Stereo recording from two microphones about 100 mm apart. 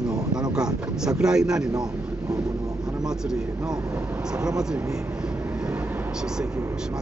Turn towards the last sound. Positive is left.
turn(degrees=-10)  # may be behind; listen again after turning